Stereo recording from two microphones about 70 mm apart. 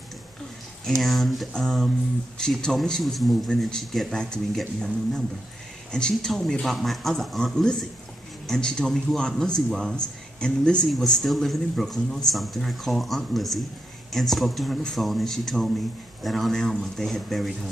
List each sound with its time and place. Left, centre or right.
0.8 s a man's voice: centre
10.9 s a man's voice: centre